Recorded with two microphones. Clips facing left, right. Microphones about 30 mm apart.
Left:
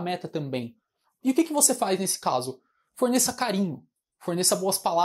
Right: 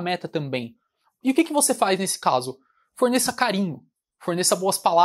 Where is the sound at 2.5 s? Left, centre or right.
Right.